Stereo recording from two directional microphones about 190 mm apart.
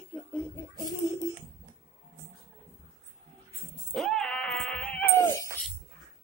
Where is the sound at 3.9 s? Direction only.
Centre (ahead or behind).